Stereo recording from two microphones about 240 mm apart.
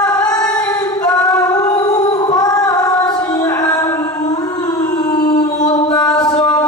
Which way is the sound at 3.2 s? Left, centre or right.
Centre.